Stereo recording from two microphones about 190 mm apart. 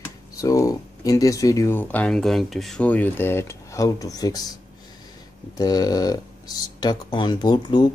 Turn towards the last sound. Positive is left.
turn(degrees=25)  # may be behind; listen again after turning